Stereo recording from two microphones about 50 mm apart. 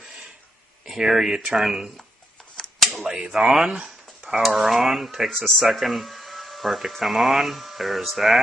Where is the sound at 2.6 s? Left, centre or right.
Centre.